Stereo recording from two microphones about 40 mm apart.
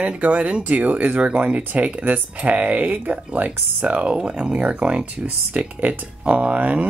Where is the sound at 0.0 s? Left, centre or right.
Right.